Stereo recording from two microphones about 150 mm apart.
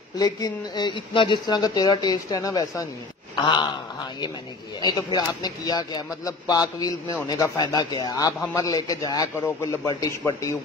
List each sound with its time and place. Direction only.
0.2 s a man's voice: 25° left (ahead or behind)
3.3 s a sound: 30° left (ahead or behind)
4.8 s a man's voice: 25° left (ahead or behind)